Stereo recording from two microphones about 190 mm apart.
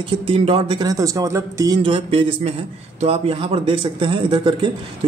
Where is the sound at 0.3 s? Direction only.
30° right (ahead or behind).